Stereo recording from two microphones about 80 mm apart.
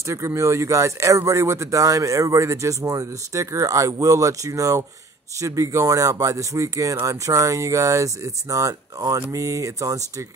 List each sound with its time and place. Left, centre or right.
0.0 s speech: right